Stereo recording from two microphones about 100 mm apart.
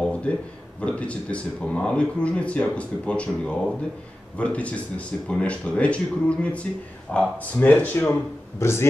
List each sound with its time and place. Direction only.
0.0 s a man's voice: 10° left (ahead or behind)